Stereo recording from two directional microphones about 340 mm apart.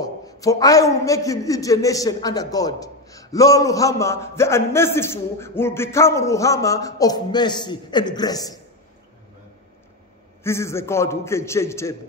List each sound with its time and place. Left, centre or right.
0.0 s a man's voice: centre
10.4 s a man's voice: centre